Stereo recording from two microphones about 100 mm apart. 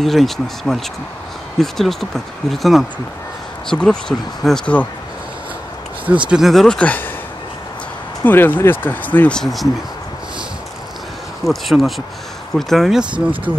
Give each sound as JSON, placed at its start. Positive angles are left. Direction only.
{"t": 0.0, "sound": "speech", "side_deg": 0}
{"t": 6.2, "sound": "speech", "side_deg": -5}
{"t": 6.8, "sound": "speech", "side_deg": 15}
{"t": 8.2, "sound": "speech", "side_deg": 20}
{"t": 9.4, "sound": "speech", "side_deg": 0}
{"t": 11.4, "sound": "speech", "side_deg": 0}
{"t": 13.0, "sound": "speech", "side_deg": -50}